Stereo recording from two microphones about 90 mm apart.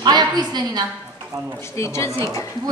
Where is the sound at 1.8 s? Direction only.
35° left (ahead or behind).